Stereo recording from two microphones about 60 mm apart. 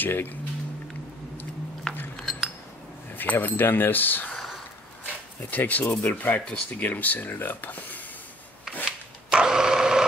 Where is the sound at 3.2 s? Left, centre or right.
Left.